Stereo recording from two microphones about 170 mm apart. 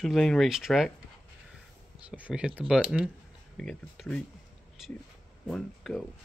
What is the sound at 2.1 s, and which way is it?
Speech, 5° right (ahead or behind).